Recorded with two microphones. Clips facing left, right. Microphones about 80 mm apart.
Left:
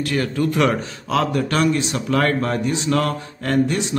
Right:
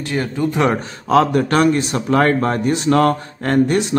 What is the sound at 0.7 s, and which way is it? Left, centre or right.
Speech, right.